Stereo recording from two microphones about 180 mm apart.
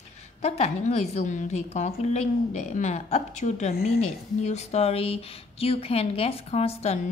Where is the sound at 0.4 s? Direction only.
35° left (ahead or behind).